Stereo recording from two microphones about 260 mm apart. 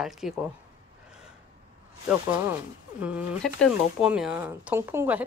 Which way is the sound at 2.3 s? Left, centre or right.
Centre.